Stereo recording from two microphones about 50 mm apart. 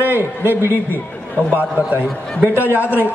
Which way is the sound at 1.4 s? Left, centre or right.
Left.